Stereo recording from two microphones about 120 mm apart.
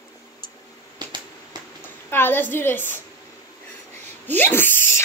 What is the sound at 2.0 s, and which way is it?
Speech, 20° left (ahead or behind).